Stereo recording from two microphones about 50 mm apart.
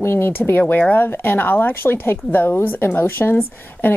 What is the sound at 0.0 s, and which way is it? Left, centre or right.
Speech, left.